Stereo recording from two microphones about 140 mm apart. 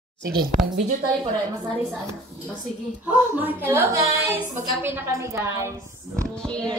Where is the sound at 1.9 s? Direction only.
5° left (ahead or behind).